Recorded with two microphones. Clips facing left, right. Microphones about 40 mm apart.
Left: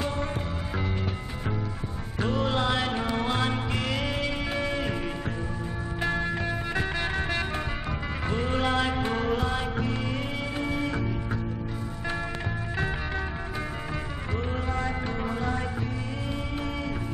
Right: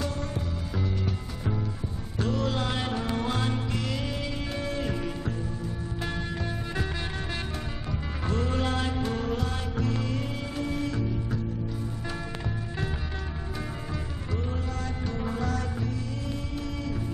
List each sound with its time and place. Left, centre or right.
2.1 s music: left
5.9 s music: left
14.8 s music: left